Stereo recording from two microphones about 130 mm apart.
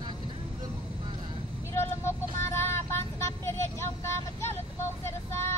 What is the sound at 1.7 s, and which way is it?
Vehicle, 20° left (ahead or behind).